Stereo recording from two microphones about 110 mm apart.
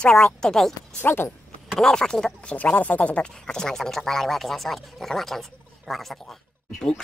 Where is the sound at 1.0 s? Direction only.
20° left (ahead or behind).